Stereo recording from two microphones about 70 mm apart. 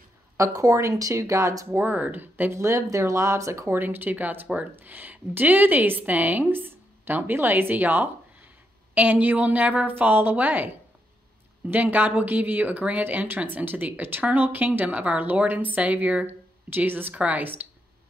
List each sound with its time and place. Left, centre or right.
0.4 s speech: right
1.7 s speech: right
2.5 s speech: right
3.7 s speech: right